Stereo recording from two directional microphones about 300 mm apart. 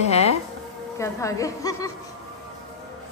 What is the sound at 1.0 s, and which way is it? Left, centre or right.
Speech, centre.